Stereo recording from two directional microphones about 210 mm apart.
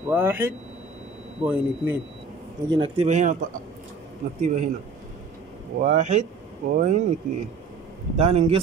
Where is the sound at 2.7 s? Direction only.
25° right (ahead or behind).